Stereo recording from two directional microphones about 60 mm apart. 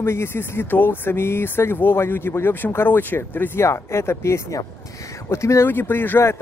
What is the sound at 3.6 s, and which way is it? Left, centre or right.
Speech, left.